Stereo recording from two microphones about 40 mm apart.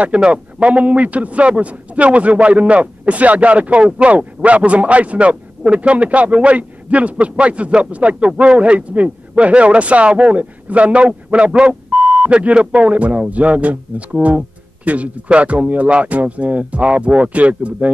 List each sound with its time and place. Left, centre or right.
0.0 s a man's voice: right